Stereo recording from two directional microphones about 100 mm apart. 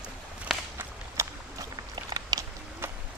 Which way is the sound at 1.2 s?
25° right (ahead or behind).